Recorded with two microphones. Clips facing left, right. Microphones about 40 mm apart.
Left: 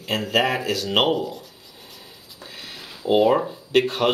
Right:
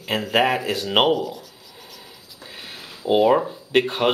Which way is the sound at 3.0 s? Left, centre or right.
Centre.